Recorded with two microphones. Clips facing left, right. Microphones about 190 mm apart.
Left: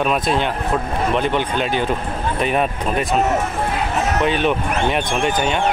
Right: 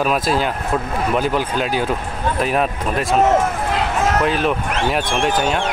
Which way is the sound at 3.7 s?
90° right.